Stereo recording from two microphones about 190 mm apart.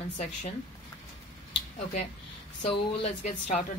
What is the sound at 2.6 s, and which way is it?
Speech, 35° left (ahead or behind).